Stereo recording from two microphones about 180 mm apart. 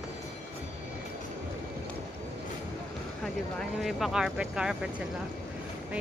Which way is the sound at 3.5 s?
Centre (ahead or behind).